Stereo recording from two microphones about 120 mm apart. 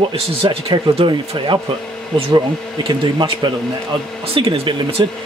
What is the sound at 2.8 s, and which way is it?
Speech, 45° right (ahead or behind).